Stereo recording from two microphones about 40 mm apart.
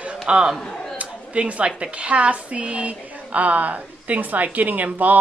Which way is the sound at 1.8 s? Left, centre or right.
Right.